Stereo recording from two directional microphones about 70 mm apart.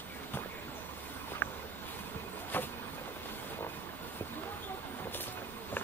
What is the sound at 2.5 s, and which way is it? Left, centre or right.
Vehicle, left.